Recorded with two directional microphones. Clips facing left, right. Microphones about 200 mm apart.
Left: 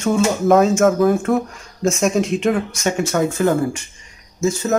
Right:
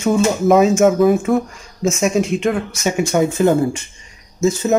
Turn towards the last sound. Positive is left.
turn(degrees=-20)  # may be behind; listen again after turning